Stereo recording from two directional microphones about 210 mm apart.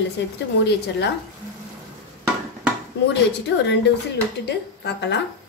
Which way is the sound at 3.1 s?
55° left (ahead or behind).